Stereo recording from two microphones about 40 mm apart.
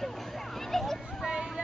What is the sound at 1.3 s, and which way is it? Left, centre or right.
Vehicle, centre.